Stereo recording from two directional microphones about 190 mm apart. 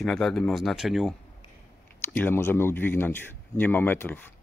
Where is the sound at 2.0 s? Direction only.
10° left (ahead or behind).